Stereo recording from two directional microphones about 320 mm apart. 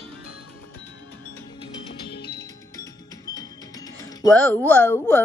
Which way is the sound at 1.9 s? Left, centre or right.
Left.